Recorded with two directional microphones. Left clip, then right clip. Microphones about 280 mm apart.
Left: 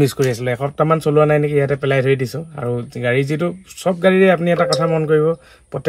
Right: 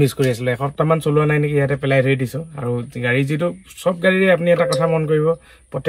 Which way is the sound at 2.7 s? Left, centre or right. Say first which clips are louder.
Left 1 dB; centre.